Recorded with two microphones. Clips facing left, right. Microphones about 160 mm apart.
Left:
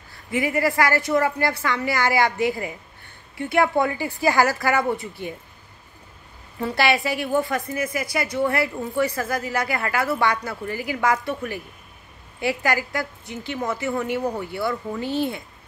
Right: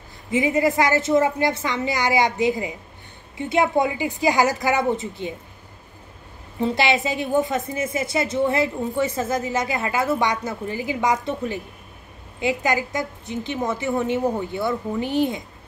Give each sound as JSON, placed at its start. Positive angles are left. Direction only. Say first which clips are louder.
{"t": 0.3, "sound": "a woman's voice", "louder": "right 3 dB", "side_deg": -20}
{"t": 6.6, "sound": "a woman's voice", "louder": "right 1 dB", "side_deg": -20}